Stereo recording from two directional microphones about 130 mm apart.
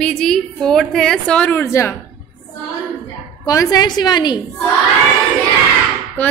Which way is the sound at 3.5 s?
30° left (ahead or behind).